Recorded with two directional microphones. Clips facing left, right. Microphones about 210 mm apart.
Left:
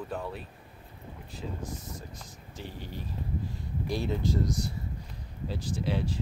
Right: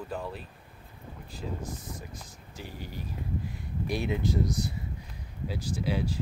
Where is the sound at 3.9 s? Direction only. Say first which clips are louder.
Right 1 dB; 15° right (ahead or behind).